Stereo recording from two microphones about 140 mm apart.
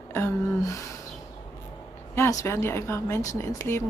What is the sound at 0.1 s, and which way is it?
Speech, 20° left (ahead or behind).